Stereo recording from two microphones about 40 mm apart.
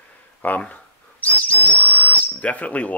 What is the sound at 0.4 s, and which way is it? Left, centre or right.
Speech, left.